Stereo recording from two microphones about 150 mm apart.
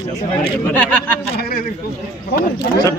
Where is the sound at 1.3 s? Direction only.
85° left.